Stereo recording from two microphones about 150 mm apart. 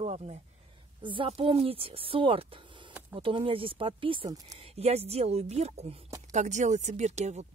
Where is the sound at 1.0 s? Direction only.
35° right (ahead or behind).